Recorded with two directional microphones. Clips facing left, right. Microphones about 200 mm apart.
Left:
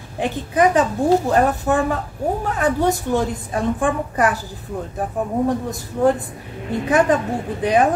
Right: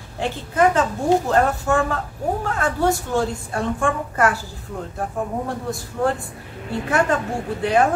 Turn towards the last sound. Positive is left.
turn(degrees=15)  # may be behind; listen again after turning